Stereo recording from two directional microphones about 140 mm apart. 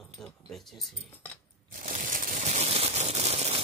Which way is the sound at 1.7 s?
70° right (ahead or behind).